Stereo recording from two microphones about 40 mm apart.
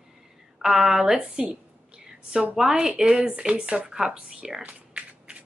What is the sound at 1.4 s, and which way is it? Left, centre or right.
Speech, right.